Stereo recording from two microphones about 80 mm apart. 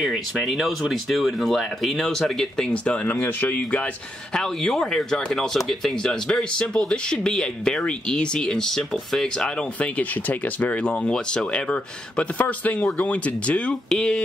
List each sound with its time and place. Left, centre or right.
0.0 s speech: centre
4.4 s speech: centre